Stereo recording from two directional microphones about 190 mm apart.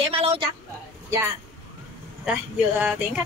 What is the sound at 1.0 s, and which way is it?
Speech, 15° right (ahead or behind).